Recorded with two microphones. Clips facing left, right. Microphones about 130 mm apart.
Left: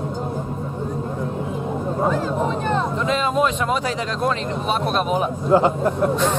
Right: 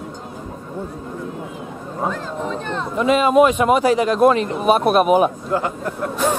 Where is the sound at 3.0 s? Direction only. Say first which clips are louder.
Right 5 dB; 10° right (ahead or behind).